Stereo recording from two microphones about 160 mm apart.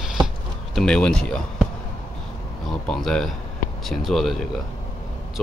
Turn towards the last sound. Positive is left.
turn(degrees=0)  # may be behind; listen again after turning